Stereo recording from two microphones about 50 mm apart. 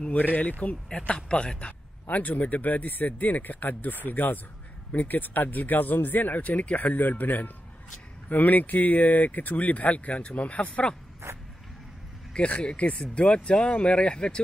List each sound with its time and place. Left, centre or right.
0.2 s speech: left
1.0 s speech: left
2.0 s speech: left
12.4 s speech: left